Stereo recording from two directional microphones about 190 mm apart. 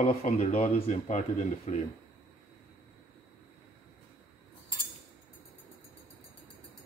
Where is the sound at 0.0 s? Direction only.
35° left (ahead or behind).